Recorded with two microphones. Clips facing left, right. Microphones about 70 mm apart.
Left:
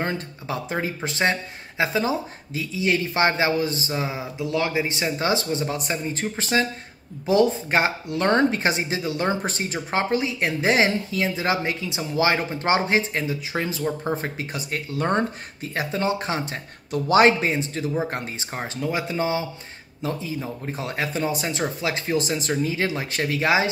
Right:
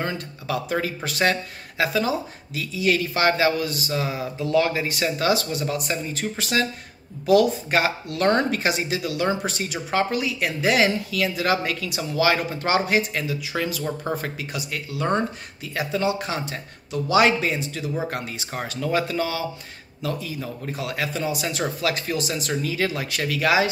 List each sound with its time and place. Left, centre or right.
0.0 s speech: left
18.6 s speech: centre; by 21.5 s left
21.5 s speech: left